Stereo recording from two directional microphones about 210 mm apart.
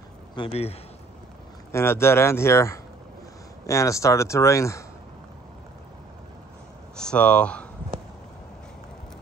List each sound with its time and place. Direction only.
0.4 s a man's voice: 30° left (ahead or behind)
1.7 s speech: 10° left (ahead or behind)
7.0 s speech: 5° left (ahead or behind)